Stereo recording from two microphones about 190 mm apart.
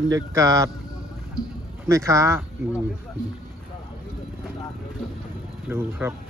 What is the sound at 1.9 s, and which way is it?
Speech, 15° right (ahead or behind).